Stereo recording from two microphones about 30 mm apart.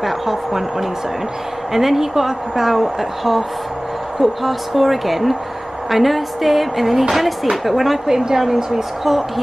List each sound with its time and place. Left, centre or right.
0.0 s a woman's voice: centre
8.1 s a woman's voice: centre